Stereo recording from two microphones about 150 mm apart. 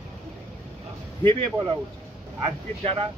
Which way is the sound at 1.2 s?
30° right (ahead or behind).